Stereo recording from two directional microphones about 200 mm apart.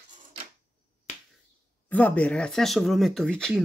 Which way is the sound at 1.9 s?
5° left (ahead or behind).